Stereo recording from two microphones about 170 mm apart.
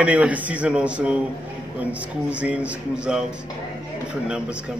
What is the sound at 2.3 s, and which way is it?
Speech, 5° right (ahead or behind).